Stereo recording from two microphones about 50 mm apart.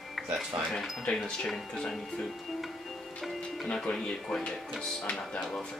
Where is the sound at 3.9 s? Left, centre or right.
Centre.